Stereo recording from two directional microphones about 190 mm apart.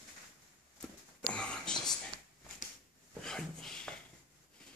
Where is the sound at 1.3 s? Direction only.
5° left (ahead or behind).